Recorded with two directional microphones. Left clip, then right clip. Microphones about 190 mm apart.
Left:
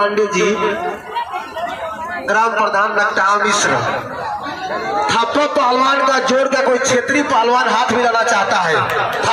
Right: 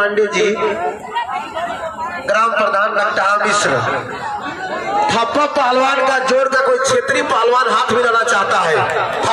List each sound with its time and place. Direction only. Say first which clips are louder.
0.1 s a man's voice: right 1 dB; 10° right (ahead or behind)
2.3 s a man's voice: even; 15° right (ahead or behind)
5.0 s a man's voice: even; 10° right (ahead or behind)